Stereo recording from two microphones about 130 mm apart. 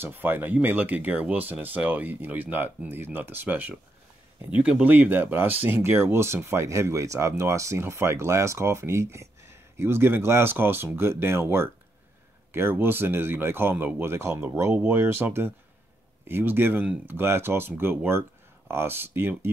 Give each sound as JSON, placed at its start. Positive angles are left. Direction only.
{"t": 0.0, "sound": "speech", "side_deg": -15}
{"t": 14.7, "sound": "speech", "side_deg": -5}
{"t": 15.0, "sound": "speech", "side_deg": -20}